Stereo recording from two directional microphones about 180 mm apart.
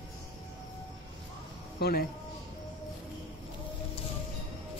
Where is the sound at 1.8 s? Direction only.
60° left (ahead or behind).